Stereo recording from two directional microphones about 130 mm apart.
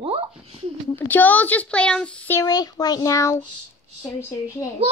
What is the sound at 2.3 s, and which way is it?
A woman's voice, 30° left (ahead or behind).